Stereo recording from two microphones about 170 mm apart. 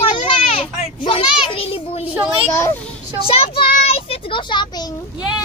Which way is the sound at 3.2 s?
35° left (ahead or behind).